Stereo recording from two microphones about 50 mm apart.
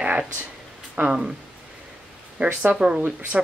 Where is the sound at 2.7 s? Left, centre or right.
Centre.